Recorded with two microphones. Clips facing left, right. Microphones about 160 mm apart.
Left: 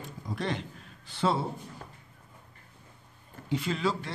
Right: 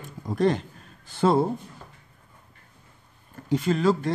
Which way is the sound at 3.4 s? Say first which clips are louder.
Right 8 dB; 45° right (ahead or behind).